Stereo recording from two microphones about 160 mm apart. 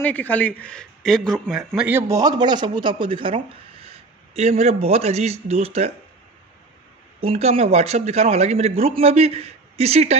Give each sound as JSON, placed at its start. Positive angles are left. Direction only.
{"t": 0.0, "sound": "a man's voice", "side_deg": 10}
{"t": 1.9, "sound": "speech", "side_deg": -15}
{"t": 7.2, "sound": "speech", "side_deg": -40}